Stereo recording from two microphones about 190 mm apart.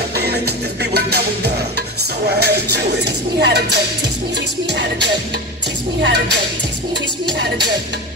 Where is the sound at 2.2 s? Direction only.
60° right (ahead or behind).